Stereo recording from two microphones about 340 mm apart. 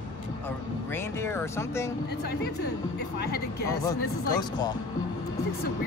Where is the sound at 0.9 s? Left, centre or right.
Centre.